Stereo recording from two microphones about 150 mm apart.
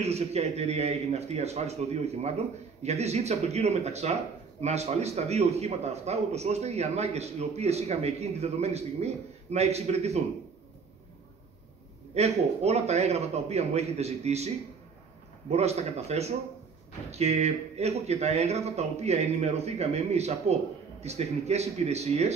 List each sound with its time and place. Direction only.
0.0 s a man's voice: 45° right (ahead or behind)
12.1 s a man's voice: 45° right (ahead or behind)
15.5 s a man's voice: 45° right (ahead or behind)